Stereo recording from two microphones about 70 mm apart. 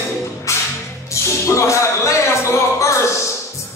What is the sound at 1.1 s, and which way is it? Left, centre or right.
Speech, left.